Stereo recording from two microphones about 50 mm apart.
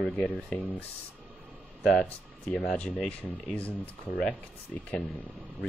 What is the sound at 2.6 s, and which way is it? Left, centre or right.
Speech, left.